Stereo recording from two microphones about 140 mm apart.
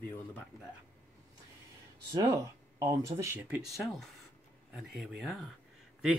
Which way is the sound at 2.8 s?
25° right (ahead or behind).